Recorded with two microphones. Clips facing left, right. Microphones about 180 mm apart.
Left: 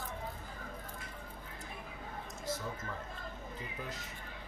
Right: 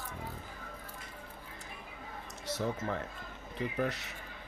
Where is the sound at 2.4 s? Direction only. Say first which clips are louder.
Right 6 dB; 75° right (ahead or behind).